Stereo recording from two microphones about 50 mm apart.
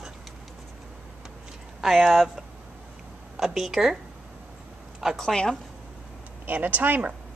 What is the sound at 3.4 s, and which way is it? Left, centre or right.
Speech, centre.